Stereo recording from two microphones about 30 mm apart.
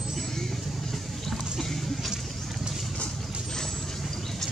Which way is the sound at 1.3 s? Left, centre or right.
Centre.